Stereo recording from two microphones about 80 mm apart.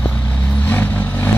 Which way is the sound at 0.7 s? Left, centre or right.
Left.